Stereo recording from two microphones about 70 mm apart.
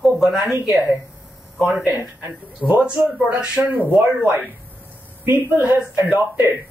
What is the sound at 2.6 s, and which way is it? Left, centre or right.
Speech, centre.